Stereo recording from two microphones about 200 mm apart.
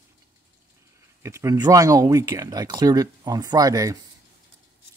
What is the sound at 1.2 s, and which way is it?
Speech, 15° right (ahead or behind).